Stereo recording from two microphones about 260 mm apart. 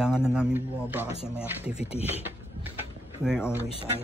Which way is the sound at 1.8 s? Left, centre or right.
Left.